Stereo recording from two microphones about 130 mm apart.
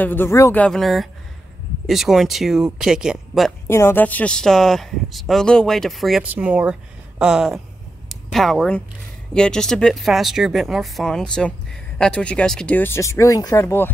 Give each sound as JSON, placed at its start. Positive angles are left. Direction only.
{"t": 0.0, "sound": "speech", "side_deg": 15}
{"t": 0.7, "sound": "speech", "side_deg": 0}
{"t": 3.6, "sound": "speech", "side_deg": 20}
{"t": 6.2, "sound": "a woman's voice", "side_deg": -10}